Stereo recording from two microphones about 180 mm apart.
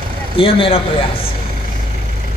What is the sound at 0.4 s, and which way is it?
Speech, 30° left (ahead or behind).